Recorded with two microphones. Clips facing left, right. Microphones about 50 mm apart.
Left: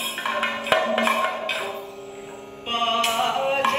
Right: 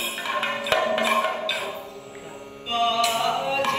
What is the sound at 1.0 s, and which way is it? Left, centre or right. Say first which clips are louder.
Music: left 1 dB; left.